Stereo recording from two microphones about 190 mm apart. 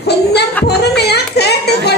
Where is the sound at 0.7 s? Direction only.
60° left (ahead or behind).